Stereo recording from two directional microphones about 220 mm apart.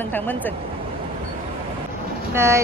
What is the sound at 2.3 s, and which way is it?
Speech, 10° right (ahead or behind).